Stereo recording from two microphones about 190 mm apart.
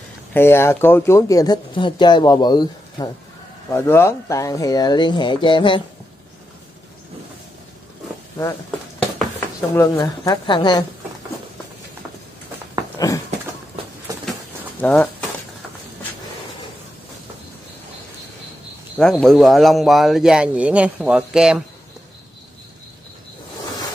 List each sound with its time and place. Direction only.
0.3 s speech: 10° left (ahead or behind)
9.6 s speech: 20° left (ahead or behind)
14.1 s a sound: 20° right (ahead or behind)
14.8 s speech: 5° left (ahead or behind)
18.9 s speech: centre (ahead or behind)